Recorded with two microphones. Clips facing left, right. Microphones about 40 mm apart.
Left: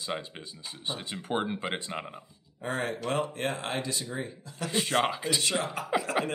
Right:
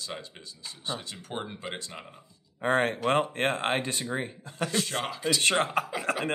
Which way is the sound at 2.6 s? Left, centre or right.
Right.